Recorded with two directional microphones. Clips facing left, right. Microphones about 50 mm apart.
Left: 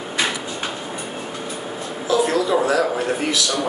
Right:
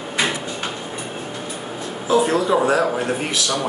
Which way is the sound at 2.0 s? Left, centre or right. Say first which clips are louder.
Right 1 dB; right.